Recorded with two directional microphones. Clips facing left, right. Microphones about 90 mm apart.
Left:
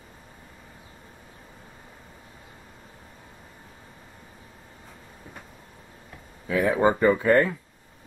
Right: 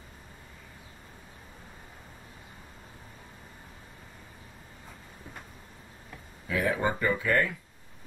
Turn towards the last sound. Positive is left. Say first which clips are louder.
# left 7 dB
turn(degrees=40)  # may be behind; listen again after turning